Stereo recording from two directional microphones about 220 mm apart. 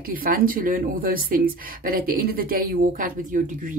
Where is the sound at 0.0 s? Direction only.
40° right (ahead or behind).